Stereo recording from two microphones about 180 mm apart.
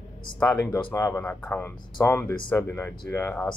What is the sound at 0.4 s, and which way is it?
Speech, 10° left (ahead or behind).